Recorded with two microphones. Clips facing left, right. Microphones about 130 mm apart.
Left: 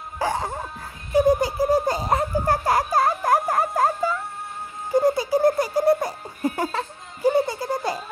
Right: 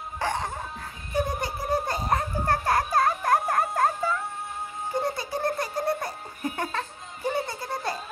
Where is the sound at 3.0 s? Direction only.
20° left (ahead or behind).